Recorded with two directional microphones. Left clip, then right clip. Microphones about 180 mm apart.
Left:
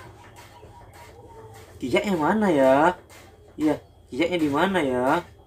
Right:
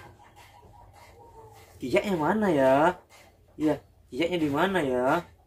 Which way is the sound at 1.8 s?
15° left (ahead or behind).